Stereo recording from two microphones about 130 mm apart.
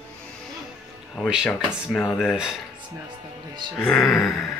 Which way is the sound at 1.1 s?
Centre (ahead or behind).